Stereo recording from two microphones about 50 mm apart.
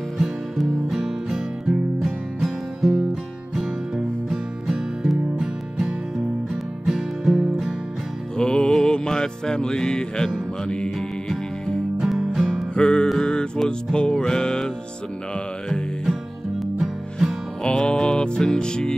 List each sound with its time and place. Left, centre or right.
0.2 s music: centre
8.4 s music: centre
12.0 s music: centre
12.7 s music: centre
16.7 s music: centre
17.6 s music: centre